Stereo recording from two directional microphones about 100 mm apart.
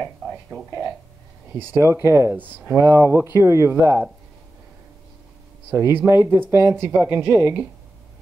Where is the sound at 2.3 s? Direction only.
15° right (ahead or behind).